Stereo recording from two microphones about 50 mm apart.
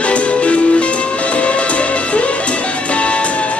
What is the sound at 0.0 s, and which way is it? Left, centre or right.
Music, left.